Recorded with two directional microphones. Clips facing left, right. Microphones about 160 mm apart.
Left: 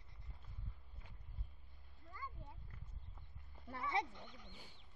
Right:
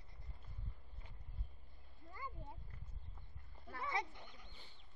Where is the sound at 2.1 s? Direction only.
25° right (ahead or behind).